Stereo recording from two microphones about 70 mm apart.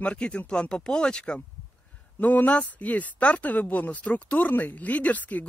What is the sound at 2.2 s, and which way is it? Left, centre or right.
Speech, left.